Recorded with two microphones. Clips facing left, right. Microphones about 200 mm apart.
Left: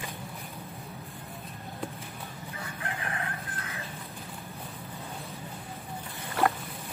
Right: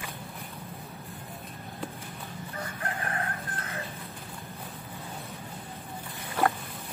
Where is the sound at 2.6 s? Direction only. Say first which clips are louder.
Right 2 dB; 40° right (ahead or behind).